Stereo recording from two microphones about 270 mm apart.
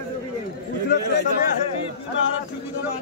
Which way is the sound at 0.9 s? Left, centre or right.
Left.